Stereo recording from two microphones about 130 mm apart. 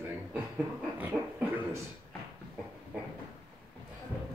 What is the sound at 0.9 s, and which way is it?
Speech, 15° right (ahead or behind).